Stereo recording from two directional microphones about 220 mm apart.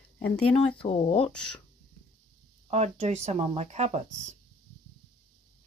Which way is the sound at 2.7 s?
30° right (ahead or behind).